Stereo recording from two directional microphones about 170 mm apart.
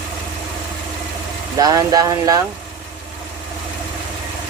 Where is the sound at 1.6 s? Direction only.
20° right (ahead or behind).